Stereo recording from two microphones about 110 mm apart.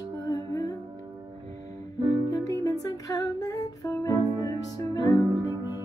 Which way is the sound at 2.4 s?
30° left (ahead or behind).